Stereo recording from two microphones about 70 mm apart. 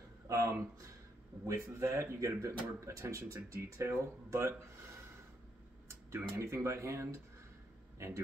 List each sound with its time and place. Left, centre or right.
0.3 s speech: right
5.9 s speech: right